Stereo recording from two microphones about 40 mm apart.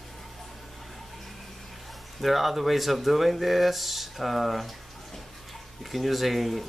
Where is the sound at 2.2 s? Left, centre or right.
Centre.